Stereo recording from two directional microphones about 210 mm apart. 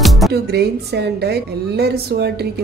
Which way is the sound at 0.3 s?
50° right (ahead or behind).